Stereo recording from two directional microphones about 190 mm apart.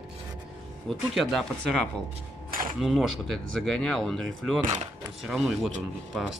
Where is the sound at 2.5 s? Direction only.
45° right (ahead or behind).